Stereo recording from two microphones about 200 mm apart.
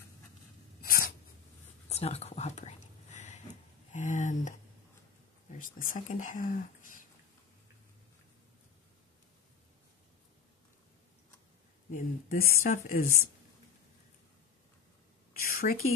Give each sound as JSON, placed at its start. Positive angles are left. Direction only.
{"t": 0.8, "sound": "writing", "side_deg": 45}
{"t": 1.9, "sound": "whispering", "side_deg": 30}
{"t": 3.9, "sound": "speech", "side_deg": 35}
{"t": 5.6, "sound": "speech", "side_deg": 40}
{"t": 11.9, "sound": "speech", "side_deg": 45}
{"t": 15.5, "sound": "a sound", "side_deg": 45}